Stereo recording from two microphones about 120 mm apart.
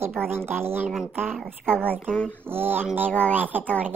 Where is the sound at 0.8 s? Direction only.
5° right (ahead or behind).